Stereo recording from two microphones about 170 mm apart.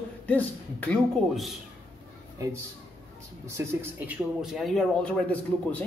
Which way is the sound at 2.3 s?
15° right (ahead or behind).